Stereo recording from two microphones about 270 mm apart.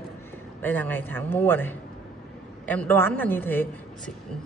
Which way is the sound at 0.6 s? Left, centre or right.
Centre.